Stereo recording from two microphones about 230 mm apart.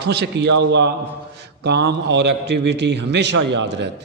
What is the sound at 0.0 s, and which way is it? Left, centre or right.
A man's voice, right.